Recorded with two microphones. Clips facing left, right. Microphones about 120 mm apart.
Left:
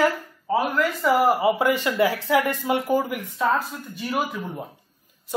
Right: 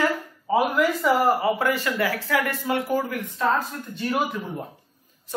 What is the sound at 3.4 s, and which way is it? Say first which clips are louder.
Speech: left 1 dB; 5° left (ahead or behind).